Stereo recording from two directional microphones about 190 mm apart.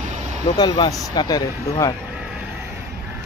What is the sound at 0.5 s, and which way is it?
Speech, 20° left (ahead or behind).